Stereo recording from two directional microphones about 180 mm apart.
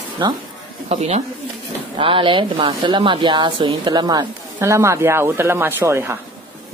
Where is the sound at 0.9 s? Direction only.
35° right (ahead or behind); by 6.2 s 15° right (ahead or behind).